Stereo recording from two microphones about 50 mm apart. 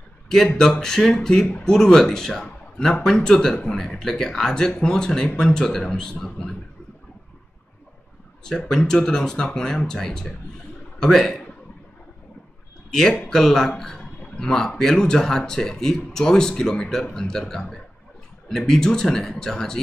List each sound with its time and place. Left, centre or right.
0.6 s a man's voice: centre
8.5 s a man's voice: centre
13.3 s a man's voice: centre